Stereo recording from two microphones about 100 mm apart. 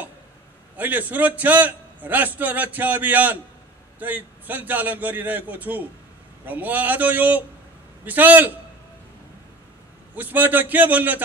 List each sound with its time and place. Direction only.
0.7 s a man's voice: 15° right (ahead or behind)
10.1 s a man's voice: 15° right (ahead or behind)